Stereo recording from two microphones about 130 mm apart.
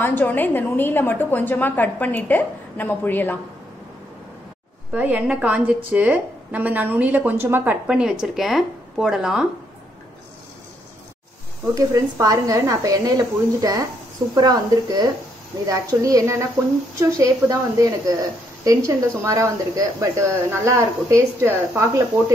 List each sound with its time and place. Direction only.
0.0 s a woman's voice: 15° left (ahead or behind)
4.9 s a woman's voice: 10° right (ahead or behind)
11.7 s speech: 25° right (ahead or behind)